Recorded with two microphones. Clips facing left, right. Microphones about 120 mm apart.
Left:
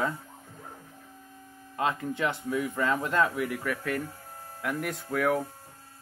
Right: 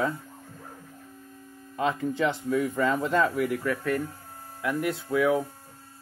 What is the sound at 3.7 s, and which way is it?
Speech, 30° right (ahead or behind).